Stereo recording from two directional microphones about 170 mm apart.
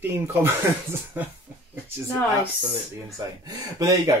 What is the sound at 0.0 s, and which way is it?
Speech, 15° right (ahead or behind).